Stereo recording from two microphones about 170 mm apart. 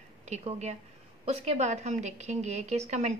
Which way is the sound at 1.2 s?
40° right (ahead or behind).